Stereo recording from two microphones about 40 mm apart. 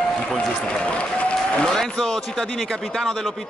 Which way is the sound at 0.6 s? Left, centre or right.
Left.